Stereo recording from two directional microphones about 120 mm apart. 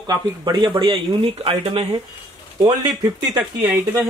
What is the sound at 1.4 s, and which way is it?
Speech, 50° right (ahead or behind).